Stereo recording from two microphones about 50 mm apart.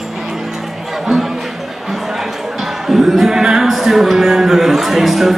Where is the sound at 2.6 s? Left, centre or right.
Centre.